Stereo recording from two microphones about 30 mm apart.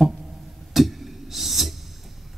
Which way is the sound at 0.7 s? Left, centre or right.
Centre.